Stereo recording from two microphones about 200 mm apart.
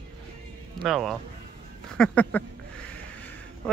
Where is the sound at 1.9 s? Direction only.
5° left (ahead or behind).